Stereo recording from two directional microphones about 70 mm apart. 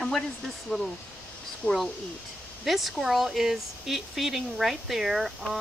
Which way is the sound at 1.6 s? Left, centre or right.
Left.